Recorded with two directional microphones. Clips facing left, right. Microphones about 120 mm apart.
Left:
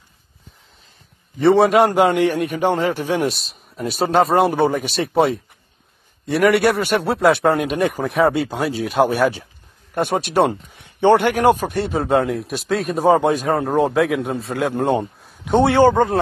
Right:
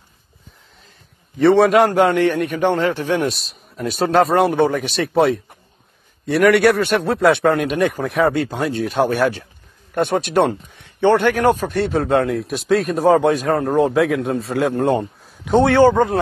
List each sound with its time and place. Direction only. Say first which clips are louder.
1.4 s speech: right 1 dB; centre (ahead or behind)
2.0 s a man's voice: right 1 dB; 15° left (ahead or behind)
2.8 s a man's voice: right 1 dB; 40° left (ahead or behind)
3.3 s speech: even; centre (ahead or behind)
11.0 s a man's voice: even; 15° left (ahead or behind)
11.7 s speech: right 1 dB; centre (ahead or behind)